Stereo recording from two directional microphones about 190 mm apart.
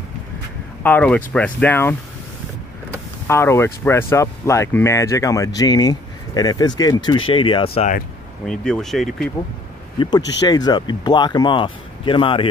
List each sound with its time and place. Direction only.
0.8 s speech: 10° left (ahead or behind)
3.3 s speech: 15° left (ahead or behind); by 7.9 s 30° left (ahead or behind)
8.5 s speech: 5° left (ahead or behind)
9.9 s speech: 20° left (ahead or behind)